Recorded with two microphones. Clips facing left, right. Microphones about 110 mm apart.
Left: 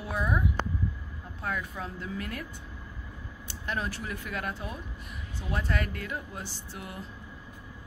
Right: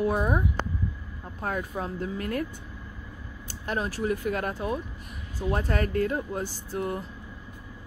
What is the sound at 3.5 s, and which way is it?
Speech, 40° right (ahead or behind).